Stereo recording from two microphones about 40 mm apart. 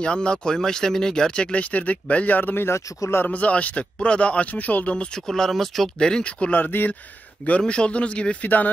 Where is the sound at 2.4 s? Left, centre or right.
Left.